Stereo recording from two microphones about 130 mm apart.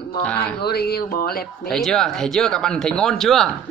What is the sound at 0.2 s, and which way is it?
Speech, 10° left (ahead or behind).